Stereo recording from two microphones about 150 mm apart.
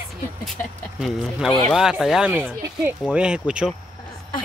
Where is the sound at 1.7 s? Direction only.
5° right (ahead or behind).